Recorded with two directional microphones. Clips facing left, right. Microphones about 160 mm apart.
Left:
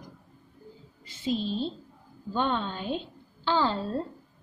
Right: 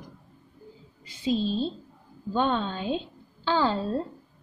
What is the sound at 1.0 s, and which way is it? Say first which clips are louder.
Speech: right 3 dB; 15° right (ahead or behind).